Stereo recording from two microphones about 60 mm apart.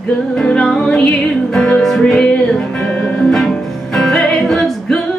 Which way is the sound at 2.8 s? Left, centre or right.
Centre.